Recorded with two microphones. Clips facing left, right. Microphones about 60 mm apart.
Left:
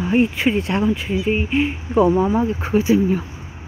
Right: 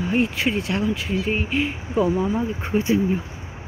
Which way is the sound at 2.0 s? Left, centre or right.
Left.